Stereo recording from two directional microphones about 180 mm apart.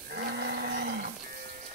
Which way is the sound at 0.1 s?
60° right (ahead or behind).